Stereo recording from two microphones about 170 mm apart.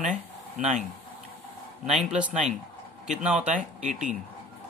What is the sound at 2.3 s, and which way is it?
Speech, 45° right (ahead or behind).